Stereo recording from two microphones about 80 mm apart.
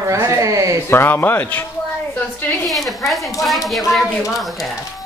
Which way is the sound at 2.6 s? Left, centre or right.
Centre.